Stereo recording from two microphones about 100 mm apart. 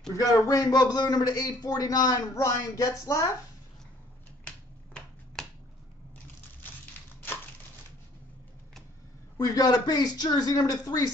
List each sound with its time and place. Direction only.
0.1 s a man's voice: 35° left (ahead or behind)
4.5 s finger snapping: 5° left (ahead or behind)
9.4 s a man's voice: 40° left (ahead or behind)